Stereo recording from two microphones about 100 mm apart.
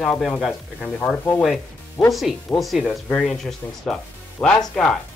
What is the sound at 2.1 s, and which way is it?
Speech, centre (ahead or behind).